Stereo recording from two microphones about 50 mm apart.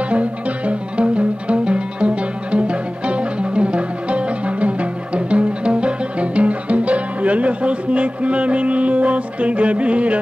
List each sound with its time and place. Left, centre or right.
0.1 s music: right